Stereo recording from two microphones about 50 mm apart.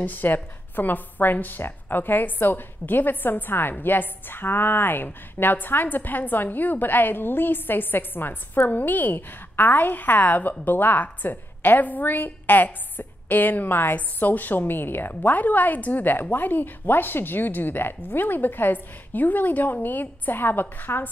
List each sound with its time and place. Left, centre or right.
0.0 s a woman's voice: left